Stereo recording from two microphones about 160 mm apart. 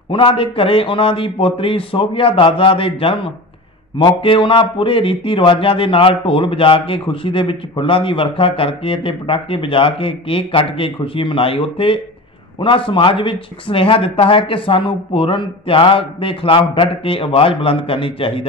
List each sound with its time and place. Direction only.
0.1 s speech: 35° left (ahead or behind)